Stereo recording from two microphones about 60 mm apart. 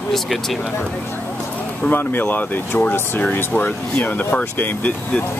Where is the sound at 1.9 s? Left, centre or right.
Left.